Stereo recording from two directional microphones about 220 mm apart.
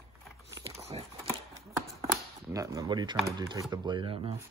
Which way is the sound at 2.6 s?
15° right (ahead or behind).